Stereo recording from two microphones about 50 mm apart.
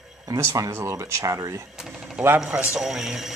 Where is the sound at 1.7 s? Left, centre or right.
Centre.